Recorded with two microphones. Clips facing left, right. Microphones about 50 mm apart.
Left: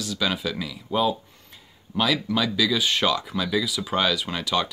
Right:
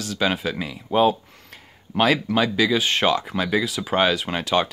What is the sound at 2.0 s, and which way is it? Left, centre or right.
Speech, right.